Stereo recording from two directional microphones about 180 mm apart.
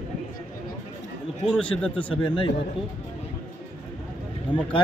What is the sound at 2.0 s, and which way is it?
Speech, 30° left (ahead or behind).